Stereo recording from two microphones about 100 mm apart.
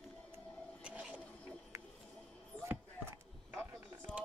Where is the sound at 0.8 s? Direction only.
10° right (ahead or behind).